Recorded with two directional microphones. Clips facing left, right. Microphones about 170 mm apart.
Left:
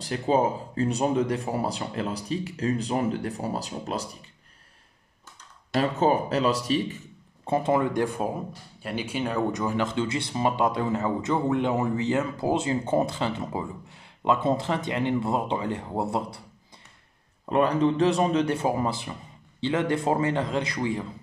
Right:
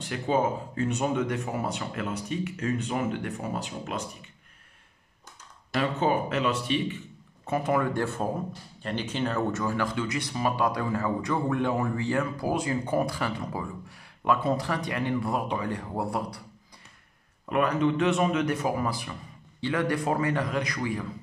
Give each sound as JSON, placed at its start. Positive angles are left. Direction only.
{"t": 0.0, "sound": "speech", "side_deg": 35}
{"t": 5.8, "sound": "speech", "side_deg": 40}
{"t": 7.4, "sound": "speech", "side_deg": 25}
{"t": 17.5, "sound": "speech", "side_deg": 30}